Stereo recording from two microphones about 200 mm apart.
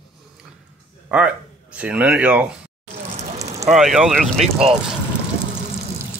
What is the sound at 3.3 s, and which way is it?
Fire, 15° right (ahead or behind).